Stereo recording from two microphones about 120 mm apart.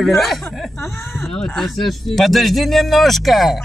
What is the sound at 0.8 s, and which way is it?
Speech, 20° left (ahead or behind).